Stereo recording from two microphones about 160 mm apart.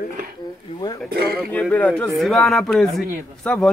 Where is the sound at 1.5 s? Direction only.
5° left (ahead or behind).